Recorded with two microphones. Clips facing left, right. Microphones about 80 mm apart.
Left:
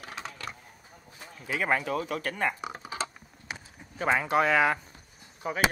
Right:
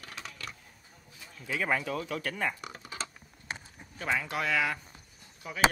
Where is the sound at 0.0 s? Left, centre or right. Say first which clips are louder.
Left 4 dB; left.